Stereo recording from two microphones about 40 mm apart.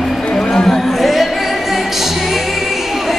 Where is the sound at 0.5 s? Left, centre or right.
Centre.